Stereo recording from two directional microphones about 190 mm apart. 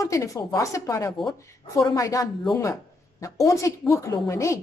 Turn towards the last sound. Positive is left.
turn(degrees=15)  # may be behind; listen again after turning